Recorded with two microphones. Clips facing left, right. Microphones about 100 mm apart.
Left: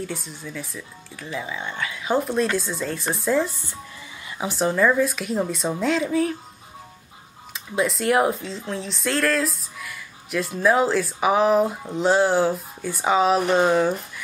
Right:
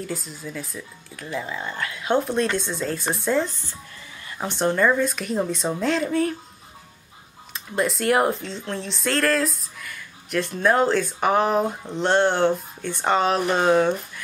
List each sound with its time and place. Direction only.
0.0 s speech: centre (ahead or behind)
7.5 s speech: centre (ahead or behind)